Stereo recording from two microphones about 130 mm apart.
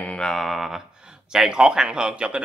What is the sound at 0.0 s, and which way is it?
Mantra, 5° left (ahead or behind).